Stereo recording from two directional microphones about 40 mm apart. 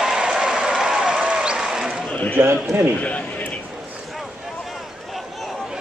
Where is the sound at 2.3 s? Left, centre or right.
Right.